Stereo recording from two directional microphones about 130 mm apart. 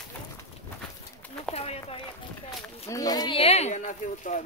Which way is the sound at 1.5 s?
50° left (ahead or behind).